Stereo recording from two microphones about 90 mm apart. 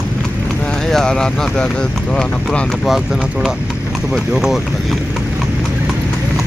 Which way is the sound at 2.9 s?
5° right (ahead or behind).